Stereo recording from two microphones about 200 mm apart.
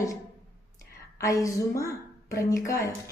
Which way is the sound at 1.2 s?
15° left (ahead or behind).